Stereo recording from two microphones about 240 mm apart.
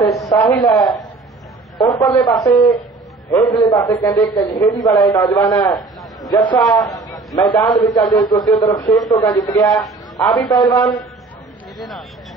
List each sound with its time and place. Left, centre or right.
0.0 s a sound: centre
0.3 s a man's voice: centre
1.8 s a man's voice: centre